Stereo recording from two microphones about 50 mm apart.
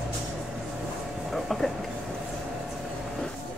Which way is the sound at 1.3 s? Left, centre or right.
Centre.